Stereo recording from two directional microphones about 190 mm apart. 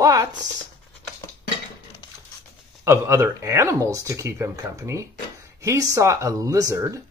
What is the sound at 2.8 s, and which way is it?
Speech, 15° right (ahead or behind).